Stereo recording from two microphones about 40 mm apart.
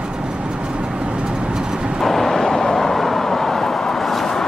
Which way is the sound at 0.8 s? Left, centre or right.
Right.